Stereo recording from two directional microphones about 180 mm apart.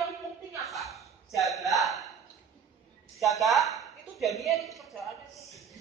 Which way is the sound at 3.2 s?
Centre (ahead or behind).